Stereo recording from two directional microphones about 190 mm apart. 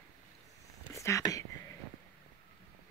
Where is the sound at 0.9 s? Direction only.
15° left (ahead or behind).